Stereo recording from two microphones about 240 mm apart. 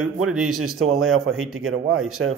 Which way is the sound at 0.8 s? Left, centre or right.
Right.